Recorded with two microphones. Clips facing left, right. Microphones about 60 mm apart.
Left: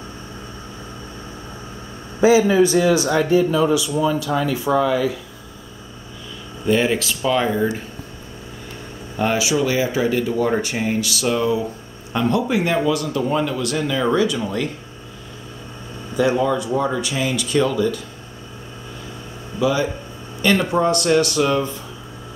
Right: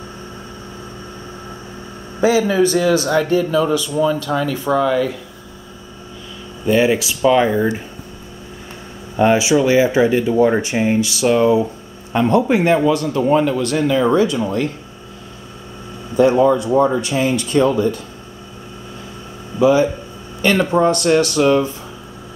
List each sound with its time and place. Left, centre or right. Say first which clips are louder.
2.2 s speech: left 1 dB; centre
6.6 s speech: right 3 dB; centre
9.1 s speech: right 6 dB; right
16.2 s speech: right 6 dB; right
19.6 s speech: right 6 dB; right